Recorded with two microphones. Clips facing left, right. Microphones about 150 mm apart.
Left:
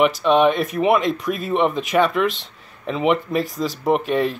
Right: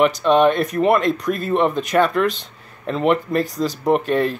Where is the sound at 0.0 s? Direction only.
Centre (ahead or behind).